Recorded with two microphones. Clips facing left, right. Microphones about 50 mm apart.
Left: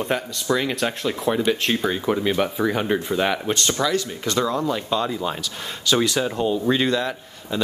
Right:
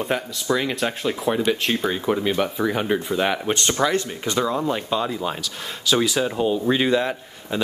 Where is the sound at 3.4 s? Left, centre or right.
Right.